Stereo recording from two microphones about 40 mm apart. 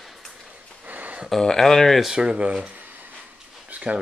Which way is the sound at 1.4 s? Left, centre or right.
Centre.